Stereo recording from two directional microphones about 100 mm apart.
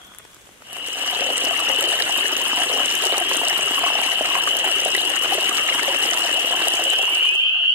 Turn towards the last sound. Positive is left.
turn(degrees=-20)  # may be behind; listen again after turning